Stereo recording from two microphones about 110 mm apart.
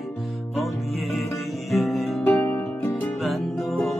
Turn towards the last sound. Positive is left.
turn(degrees=0)  # may be behind; listen again after turning